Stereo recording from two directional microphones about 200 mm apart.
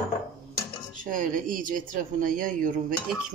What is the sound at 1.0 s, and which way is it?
A woman's voice, 40° right (ahead or behind).